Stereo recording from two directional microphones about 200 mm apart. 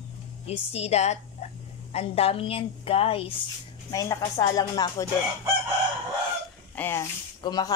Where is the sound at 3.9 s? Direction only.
20° left (ahead or behind).